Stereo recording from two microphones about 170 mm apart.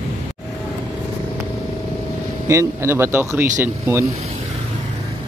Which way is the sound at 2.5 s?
15° right (ahead or behind).